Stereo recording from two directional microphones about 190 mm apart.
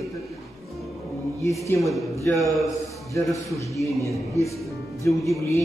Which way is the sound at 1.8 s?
Centre (ahead or behind).